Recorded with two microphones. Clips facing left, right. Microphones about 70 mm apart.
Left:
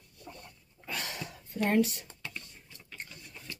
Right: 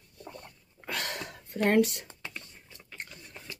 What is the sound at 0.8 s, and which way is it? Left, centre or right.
Cough, right.